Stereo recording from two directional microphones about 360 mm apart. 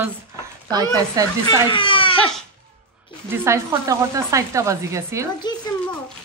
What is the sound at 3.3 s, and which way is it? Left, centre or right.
Speech, centre.